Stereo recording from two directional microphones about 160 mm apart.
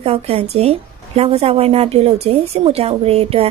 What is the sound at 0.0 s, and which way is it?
A woman's voice, 40° right (ahead or behind).